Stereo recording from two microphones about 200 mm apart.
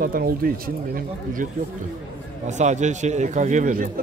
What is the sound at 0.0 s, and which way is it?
Speech, 45° right (ahead or behind).